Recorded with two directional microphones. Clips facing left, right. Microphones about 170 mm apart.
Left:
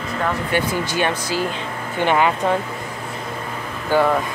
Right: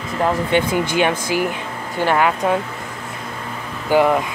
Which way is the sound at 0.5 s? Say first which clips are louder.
Right 3 dB; 20° right (ahead or behind).